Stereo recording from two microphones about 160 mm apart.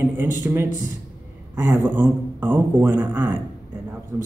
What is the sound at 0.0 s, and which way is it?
A man's voice, 15° right (ahead or behind).